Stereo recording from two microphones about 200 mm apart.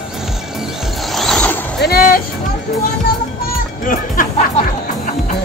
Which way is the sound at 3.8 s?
40° left (ahead or behind).